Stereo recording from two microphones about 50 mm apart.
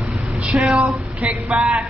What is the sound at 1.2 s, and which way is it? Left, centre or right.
Music, right.